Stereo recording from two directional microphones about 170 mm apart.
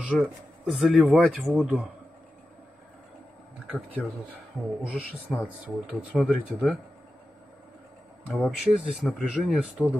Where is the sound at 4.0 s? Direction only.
Centre (ahead or behind).